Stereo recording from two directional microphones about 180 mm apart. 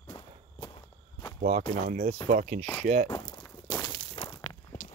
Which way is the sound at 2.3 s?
40° right (ahead or behind).